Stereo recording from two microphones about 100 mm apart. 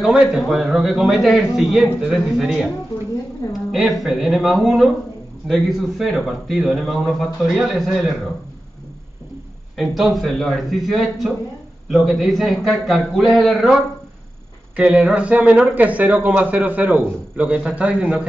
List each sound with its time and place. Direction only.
0.0 s a man's voice: 5° right (ahead or behind)
3.4 s a woman's voice: 35° left (ahead or behind)
3.7 s a man's voice: centre (ahead or behind)
9.8 s a man's voice: centre (ahead or behind)
14.9 s a man's voice: 5° right (ahead or behind)